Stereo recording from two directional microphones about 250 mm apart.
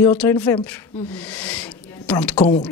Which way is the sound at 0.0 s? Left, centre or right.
Centre.